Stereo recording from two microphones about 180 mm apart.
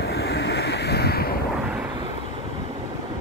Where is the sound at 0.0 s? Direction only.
65° left (ahead or behind).